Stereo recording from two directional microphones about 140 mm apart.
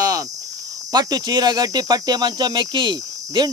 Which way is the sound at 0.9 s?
30° right (ahead or behind).